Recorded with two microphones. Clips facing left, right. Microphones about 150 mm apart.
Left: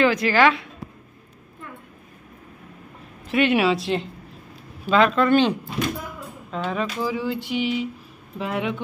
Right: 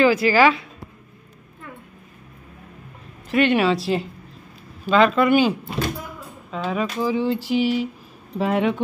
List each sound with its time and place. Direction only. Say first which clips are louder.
0.0 s speech: right 2 dB; 5° right (ahead or behind)
3.3 s speech: right 1 dB; centre (ahead or behind)
7.0 s a sound: right 4 dB; 25° right (ahead or behind)
8.4 s speech: right 6 dB; 35° right (ahead or behind)